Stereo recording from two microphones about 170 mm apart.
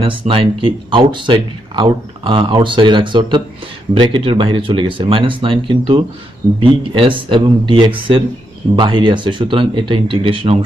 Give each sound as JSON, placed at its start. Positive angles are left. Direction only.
{"t": 0.0, "sound": "speech", "side_deg": -30}